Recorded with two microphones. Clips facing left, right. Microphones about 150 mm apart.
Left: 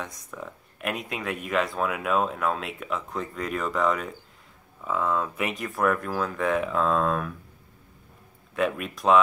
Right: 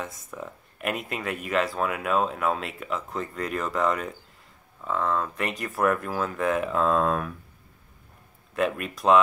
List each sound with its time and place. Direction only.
0.0 s speech: 5° right (ahead or behind)
8.5 s speech: centre (ahead or behind)